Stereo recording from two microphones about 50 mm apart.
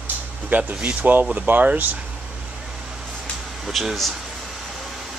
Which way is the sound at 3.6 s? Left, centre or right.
Centre.